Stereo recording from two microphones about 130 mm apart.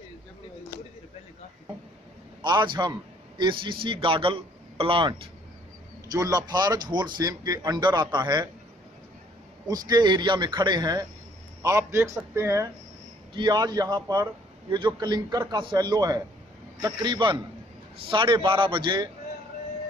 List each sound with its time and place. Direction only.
2.4 s a man's voice: 35° right (ahead or behind)
6.1 s a man's voice: 25° right (ahead or behind)
9.7 s a man's voice: 30° right (ahead or behind)
13.3 s a man's voice: 35° right (ahead or behind)